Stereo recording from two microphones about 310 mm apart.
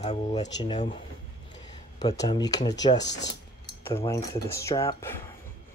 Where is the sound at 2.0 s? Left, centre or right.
Centre.